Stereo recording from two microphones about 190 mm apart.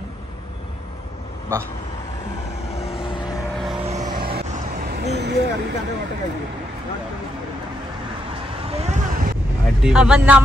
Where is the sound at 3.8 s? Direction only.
35° right (ahead or behind); by 5.6 s 60° right (ahead or behind).